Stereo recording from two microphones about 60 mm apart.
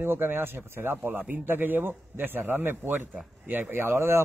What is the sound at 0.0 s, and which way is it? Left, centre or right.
A man's voice, right.